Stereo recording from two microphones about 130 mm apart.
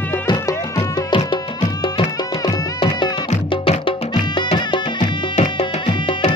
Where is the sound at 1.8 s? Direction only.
40° left (ahead or behind).